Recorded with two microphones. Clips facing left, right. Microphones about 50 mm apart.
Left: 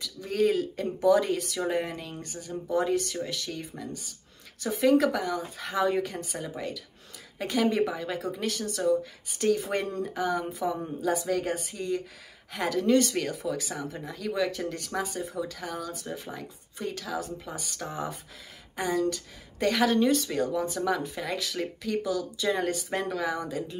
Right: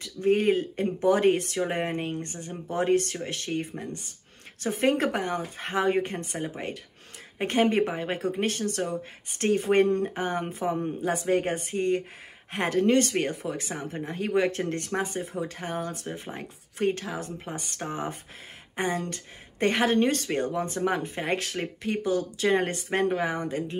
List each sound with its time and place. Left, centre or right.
0.0 s speech: right